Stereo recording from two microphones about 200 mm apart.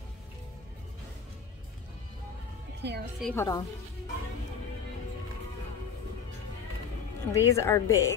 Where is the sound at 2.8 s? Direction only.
55° right (ahead or behind).